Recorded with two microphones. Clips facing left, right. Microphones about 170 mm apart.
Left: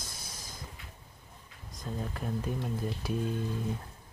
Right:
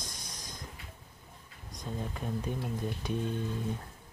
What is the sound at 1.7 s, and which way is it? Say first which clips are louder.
Speech: left 1 dB; centre (ahead or behind).